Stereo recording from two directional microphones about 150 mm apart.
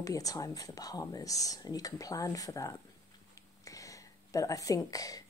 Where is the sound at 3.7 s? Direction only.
20° left (ahead or behind).